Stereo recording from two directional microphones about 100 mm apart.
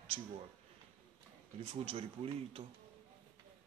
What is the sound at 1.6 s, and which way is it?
Speech, 80° right.